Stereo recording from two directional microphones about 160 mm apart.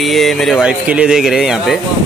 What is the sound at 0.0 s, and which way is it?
Speech, centre (ahead or behind).